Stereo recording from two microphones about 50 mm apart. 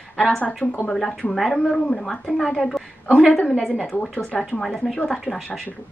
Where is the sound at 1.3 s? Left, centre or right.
Centre.